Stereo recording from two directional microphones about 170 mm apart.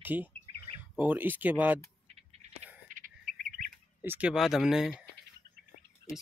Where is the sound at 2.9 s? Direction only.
55° right (ahead or behind).